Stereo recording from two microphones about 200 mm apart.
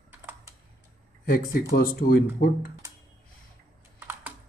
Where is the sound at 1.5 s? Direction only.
50° left (ahead or behind).